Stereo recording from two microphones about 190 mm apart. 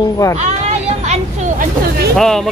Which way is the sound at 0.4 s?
35° right (ahead or behind).